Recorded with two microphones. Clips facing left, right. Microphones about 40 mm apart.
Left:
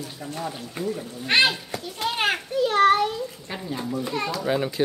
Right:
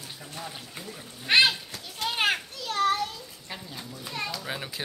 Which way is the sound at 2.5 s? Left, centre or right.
Left.